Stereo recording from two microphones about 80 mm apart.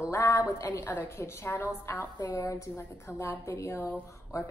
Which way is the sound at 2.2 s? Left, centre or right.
Left.